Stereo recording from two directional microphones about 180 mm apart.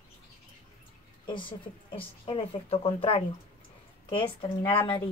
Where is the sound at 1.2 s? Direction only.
25° left (ahead or behind).